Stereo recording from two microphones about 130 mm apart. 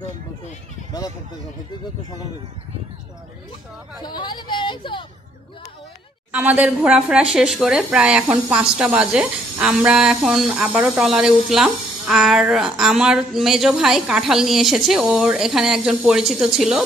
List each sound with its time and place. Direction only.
4.0 s speech: 35° left (ahead or behind)
6.3 s speech: 10° right (ahead or behind)